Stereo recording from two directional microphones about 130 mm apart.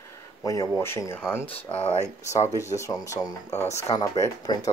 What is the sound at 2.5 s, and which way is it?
Speech, 25° left (ahead or behind).